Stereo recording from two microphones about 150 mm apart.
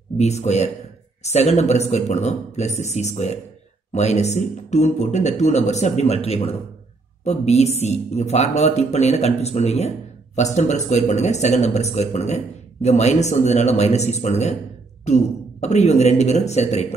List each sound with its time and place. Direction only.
0.2 s speech: 50° left (ahead or behind)